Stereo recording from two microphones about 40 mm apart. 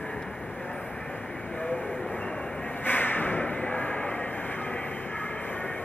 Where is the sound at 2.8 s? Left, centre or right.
Left.